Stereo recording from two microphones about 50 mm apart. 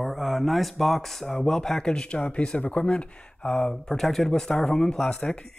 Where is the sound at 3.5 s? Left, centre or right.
Centre.